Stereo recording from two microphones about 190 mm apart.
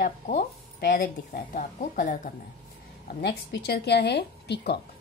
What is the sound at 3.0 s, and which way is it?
A woman's voice, 55° left (ahead or behind).